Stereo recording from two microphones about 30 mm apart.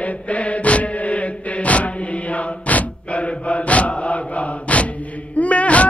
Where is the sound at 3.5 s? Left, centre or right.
Left.